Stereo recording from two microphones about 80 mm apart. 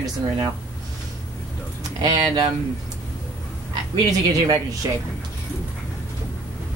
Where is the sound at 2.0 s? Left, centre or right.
Right.